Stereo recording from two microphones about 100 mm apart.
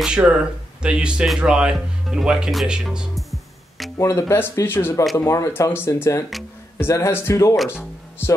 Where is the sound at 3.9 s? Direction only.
30° left (ahead or behind).